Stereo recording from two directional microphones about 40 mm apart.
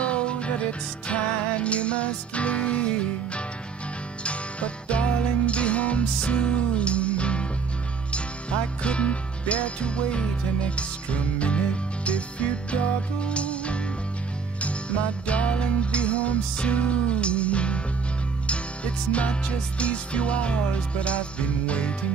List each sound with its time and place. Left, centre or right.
0.0 s music: left